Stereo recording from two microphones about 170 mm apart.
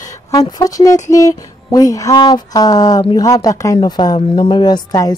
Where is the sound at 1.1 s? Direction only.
20° left (ahead or behind).